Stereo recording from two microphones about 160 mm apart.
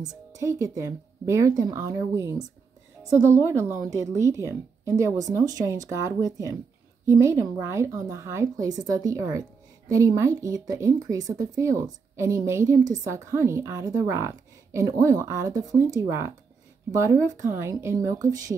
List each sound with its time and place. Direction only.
0.1 s a woman's voice: 20° right (ahead or behind)